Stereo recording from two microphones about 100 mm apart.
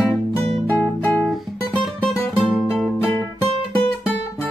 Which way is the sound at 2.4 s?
Centre (ahead or behind).